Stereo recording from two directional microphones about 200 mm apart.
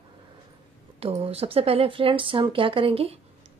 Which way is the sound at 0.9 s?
30° right (ahead or behind).